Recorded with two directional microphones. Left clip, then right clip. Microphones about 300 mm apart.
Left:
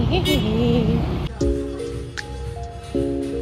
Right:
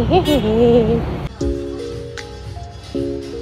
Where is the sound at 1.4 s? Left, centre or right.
Centre.